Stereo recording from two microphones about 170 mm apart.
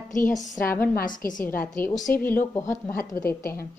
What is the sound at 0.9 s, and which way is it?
Speech, 55° left (ahead or behind).